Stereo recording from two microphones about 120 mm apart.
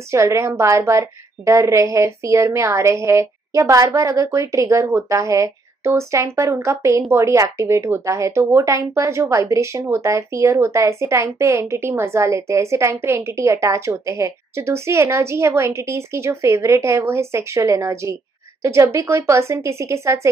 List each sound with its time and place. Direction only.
0.1 s a woman's voice: 25° right (ahead or behind)